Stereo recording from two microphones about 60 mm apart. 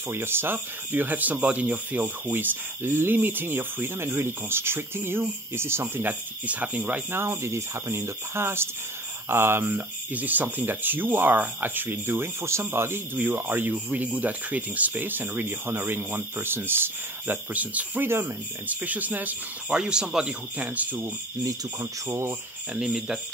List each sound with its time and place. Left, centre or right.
0.1 s speech: right
2.8 s speech: right
6.4 s speech: right
7.1 s speech: right
17.6 s speech: right
18.0 s speech: right
18.7 s speech: right
19.7 s speech: centre
20.5 s speech: right
21.5 s speech: right
22.8 s speech: centre